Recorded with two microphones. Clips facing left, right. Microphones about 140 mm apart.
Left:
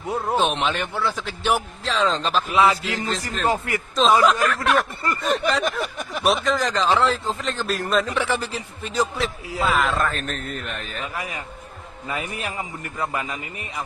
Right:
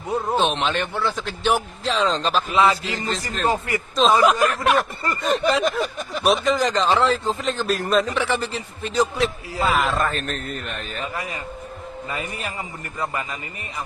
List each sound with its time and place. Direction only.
0.1 s a man's voice: 10° left (ahead or behind)
4.3 s speech: 15° right (ahead or behind)
5.0 s a man's voice: centre (ahead or behind)